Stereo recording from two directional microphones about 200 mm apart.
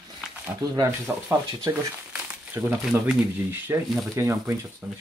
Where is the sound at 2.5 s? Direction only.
5° right (ahead or behind).